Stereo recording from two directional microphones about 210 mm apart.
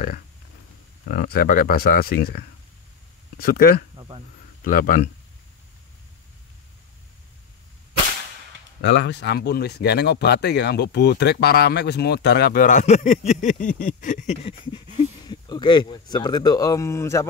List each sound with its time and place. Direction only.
1.0 s speech: 45° left (ahead or behind)
3.9 s a sound: 20° right (ahead or behind)
4.6 s speech: 40° left (ahead or behind)
8.8 s speech: 55° left (ahead or behind); by 13.7 s 35° left (ahead or behind)
13.8 s a sound: 35° left (ahead or behind)
15.2 s speech: 20° left (ahead or behind)